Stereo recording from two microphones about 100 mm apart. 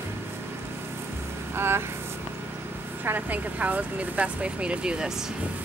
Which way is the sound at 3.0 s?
15° right (ahead or behind).